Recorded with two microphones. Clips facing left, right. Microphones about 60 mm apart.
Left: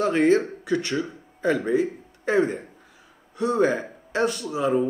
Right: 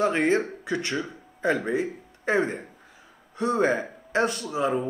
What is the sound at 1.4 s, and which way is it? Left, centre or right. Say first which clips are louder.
Speech: left 3 dB; centre.